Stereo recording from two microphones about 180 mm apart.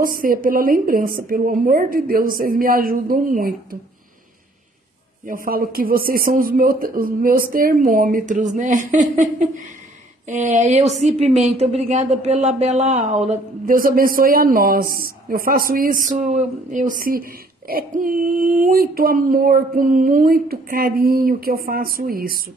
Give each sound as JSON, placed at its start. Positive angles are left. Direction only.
{"t": 0.0, "sound": "speech", "side_deg": -50}
{"t": 5.2, "sound": "speech", "side_deg": -50}
{"t": 10.2, "sound": "speech", "side_deg": -40}
{"t": 13.7, "sound": "speech", "side_deg": -50}
{"t": 16.1, "sound": "speech", "side_deg": -40}